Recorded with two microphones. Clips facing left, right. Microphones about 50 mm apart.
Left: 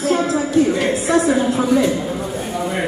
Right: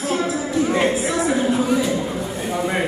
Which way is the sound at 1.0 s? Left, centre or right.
Left.